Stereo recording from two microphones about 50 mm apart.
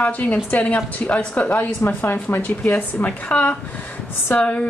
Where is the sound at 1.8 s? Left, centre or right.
Left.